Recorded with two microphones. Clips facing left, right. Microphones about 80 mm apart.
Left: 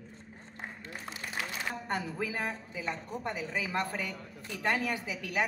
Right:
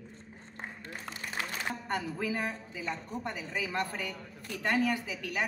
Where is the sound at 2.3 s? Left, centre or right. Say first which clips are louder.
Right 1 dB; left.